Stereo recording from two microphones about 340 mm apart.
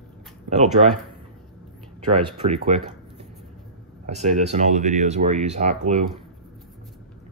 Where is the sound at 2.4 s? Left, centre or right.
Centre.